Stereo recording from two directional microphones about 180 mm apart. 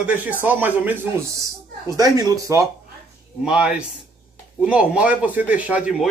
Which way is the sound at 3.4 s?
5° right (ahead or behind).